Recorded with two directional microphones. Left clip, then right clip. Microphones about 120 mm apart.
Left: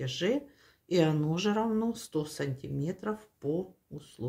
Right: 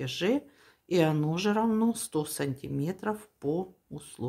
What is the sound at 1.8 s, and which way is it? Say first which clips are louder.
Speech: right 3 dB; 40° right (ahead or behind).